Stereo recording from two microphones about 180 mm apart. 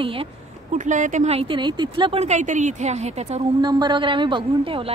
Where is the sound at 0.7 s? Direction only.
45° right (ahead or behind).